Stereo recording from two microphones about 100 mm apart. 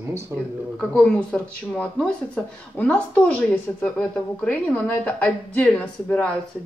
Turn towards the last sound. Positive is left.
turn(degrees=10)  # may be behind; listen again after turning